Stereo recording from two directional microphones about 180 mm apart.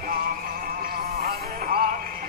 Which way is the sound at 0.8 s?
55° right (ahead or behind).